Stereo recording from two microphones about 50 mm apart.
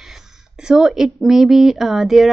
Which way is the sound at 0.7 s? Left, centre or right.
Centre.